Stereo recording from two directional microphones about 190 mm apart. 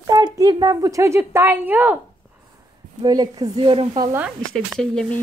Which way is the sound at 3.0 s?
20° right (ahead or behind).